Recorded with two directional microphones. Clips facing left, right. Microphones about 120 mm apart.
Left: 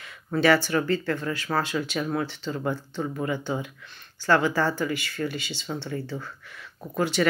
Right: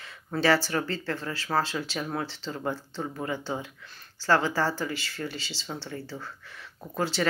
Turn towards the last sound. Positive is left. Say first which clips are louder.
# left 4 dB
turn(degrees=-30)  # may be behind; listen again after turning